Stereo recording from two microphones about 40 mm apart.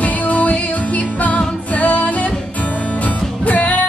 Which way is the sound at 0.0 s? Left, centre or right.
Left.